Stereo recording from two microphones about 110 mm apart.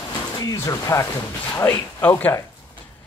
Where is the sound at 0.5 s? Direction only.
30° left (ahead or behind).